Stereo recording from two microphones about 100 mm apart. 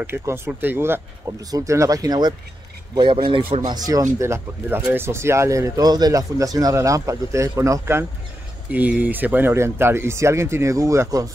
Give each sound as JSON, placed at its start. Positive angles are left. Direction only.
{"t": 0.0, "sound": "speech", "side_deg": -25}
{"t": 2.9, "sound": "a man's voice", "side_deg": -50}
{"t": 3.7, "sound": "speech", "side_deg": -40}
{"t": 8.7, "sound": "speech", "side_deg": -15}